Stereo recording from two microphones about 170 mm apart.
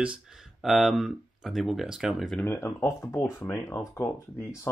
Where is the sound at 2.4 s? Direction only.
15° left (ahead or behind).